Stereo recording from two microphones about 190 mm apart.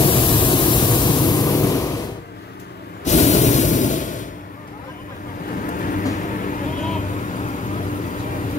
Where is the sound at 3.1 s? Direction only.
40° left (ahead or behind).